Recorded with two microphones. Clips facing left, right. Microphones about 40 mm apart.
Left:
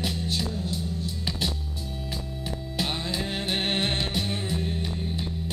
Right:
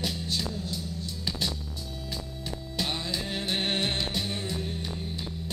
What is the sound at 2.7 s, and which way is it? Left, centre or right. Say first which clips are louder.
Music: left 2 dB; centre.